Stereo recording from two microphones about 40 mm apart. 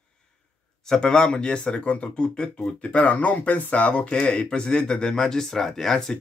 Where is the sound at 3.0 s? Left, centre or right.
Left; by 6.2 s centre.